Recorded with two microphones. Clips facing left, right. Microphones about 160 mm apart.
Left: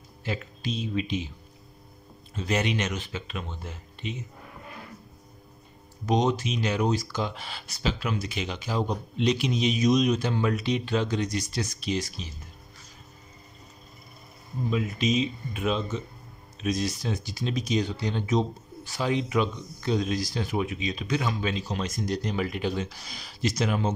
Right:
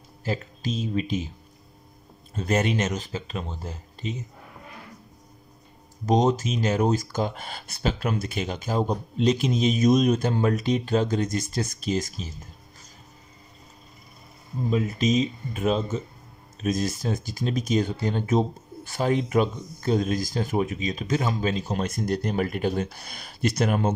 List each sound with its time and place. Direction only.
0.2 s speech: 40° right (ahead or behind)
2.3 s speech: 45° right (ahead or behind)
6.0 s speech: 45° right (ahead or behind)
14.7 s speech: 40° right (ahead or behind)